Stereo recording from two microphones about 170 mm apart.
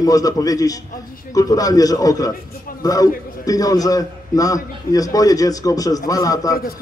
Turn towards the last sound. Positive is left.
turn(degrees=20)  # may be behind; listen again after turning